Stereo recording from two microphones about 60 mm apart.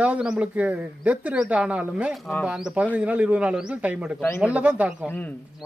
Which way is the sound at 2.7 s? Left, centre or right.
Right.